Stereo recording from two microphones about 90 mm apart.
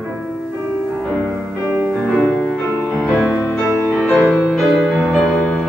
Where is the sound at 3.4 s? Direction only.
25° left (ahead or behind).